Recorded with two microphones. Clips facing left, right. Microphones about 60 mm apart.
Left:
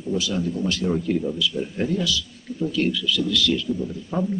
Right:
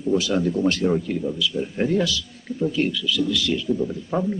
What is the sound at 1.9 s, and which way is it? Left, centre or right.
Speech, right.